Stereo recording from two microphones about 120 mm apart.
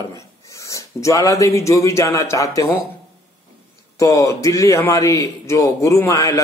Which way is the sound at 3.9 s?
25° left (ahead or behind).